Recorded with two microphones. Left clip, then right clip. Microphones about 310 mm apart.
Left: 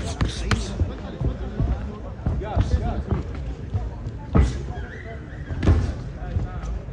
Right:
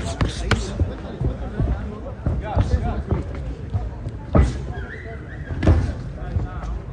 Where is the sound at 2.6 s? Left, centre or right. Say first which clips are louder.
Right 2 dB; centre.